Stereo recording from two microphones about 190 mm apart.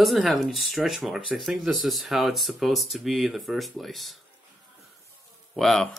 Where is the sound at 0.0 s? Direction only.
Centre (ahead or behind).